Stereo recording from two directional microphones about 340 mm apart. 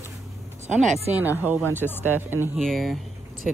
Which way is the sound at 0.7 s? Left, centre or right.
Centre.